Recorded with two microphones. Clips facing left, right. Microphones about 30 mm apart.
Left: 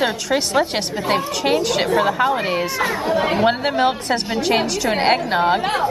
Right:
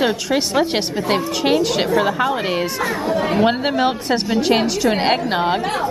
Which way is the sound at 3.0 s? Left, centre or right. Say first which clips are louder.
Right 1 dB; centre.